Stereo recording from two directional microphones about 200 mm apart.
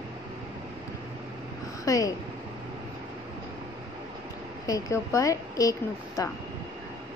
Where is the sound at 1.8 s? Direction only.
15° left (ahead or behind).